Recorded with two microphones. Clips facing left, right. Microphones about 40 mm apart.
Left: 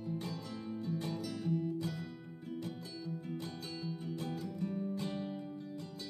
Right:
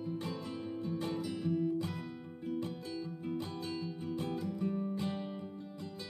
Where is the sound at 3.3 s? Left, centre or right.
Centre.